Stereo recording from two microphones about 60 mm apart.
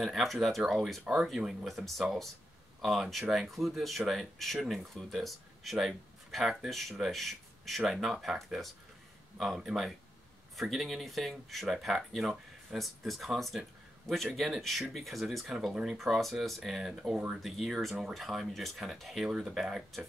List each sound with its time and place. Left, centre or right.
0.0 s speech: centre